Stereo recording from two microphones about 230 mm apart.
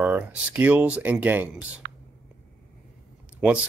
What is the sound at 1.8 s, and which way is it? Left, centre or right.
Whispering, right.